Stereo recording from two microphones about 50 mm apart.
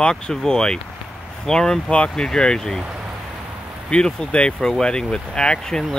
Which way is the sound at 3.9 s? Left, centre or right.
Centre.